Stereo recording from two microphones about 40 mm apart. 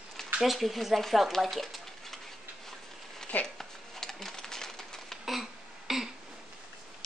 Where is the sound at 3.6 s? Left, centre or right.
Centre.